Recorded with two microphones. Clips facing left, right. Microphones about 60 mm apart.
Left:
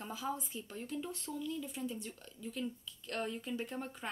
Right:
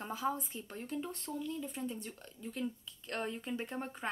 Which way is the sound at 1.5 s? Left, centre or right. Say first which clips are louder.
Even; right.